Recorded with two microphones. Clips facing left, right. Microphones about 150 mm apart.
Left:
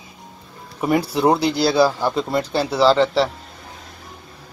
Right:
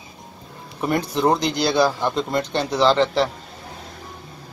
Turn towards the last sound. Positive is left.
turn(degrees=5)  # may be behind; listen again after turning